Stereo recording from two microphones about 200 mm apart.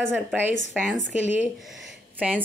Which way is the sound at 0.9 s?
35° left (ahead or behind).